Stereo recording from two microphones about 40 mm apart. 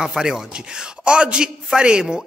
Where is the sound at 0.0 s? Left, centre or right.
Centre.